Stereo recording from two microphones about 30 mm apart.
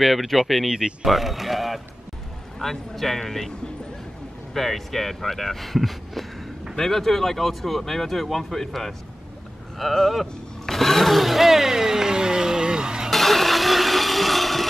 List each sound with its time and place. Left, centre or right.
0.0 s speech: centre
4.6 s speech: centre
9.8 s speech: centre
10.6 s a sound: centre; by 13.1 s right
13.1 s blender: centre